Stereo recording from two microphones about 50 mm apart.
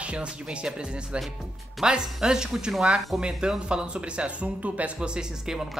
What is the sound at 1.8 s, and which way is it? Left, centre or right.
Speech, centre.